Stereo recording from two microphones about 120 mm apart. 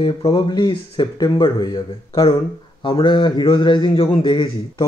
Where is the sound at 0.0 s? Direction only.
50° left (ahead or behind).